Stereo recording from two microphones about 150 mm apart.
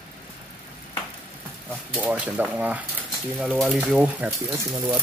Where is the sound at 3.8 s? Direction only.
10° right (ahead or behind).